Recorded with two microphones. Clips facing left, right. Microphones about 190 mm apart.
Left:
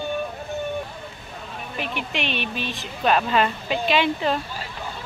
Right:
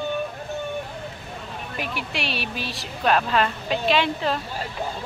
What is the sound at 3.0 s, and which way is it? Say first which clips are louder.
Speech: left 1 dB; centre (ahead or behind).